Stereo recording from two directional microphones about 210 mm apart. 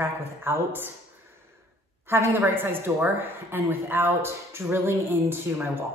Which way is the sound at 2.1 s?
10° right (ahead or behind).